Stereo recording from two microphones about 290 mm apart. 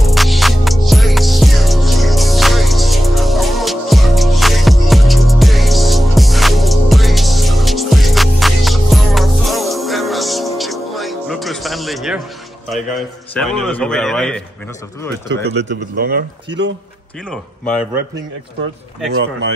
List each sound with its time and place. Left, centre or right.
0.0 s music: centre
13.3 s speech: centre
15.5 s speech: right
17.3 s speech: centre